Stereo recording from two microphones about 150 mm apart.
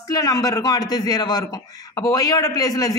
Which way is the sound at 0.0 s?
25° left (ahead or behind).